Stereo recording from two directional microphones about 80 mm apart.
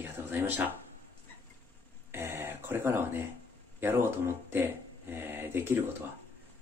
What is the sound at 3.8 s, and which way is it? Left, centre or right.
Speech, right.